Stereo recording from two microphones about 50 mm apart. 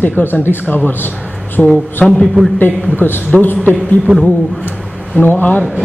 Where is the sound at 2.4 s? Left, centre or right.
Right.